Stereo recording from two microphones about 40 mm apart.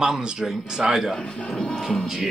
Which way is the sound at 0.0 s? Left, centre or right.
Centre.